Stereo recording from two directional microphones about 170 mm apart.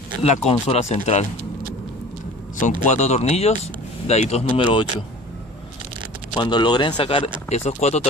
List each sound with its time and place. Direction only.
0.2 s speech: 40° left (ahead or behind)
2.5 s speech: 45° left (ahead or behind)
6.3 s speech: 25° left (ahead or behind)